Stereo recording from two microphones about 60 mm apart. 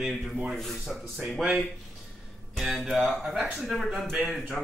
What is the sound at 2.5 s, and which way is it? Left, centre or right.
Speech, centre.